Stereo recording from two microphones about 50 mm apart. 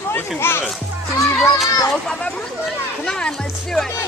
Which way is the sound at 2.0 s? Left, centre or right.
Centre.